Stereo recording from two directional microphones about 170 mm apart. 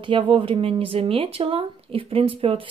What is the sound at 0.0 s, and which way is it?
Speech, 30° right (ahead or behind).